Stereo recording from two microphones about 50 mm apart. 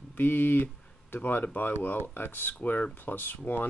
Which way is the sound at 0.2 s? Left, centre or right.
Left.